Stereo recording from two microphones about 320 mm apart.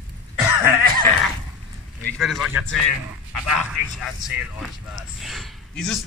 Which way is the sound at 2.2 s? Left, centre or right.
Centre.